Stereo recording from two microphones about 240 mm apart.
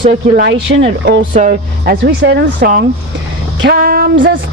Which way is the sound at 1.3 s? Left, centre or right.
Right.